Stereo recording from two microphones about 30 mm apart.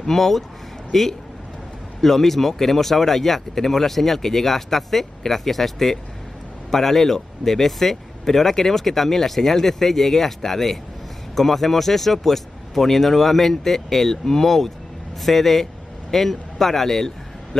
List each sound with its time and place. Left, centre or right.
0.0 s speech: centre
14.4 s speech: centre